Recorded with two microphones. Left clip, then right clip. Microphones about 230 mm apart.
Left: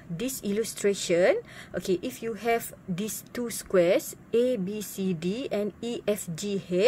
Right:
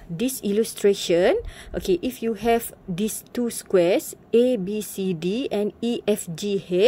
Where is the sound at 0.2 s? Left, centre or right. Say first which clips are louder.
Right 7 dB; centre.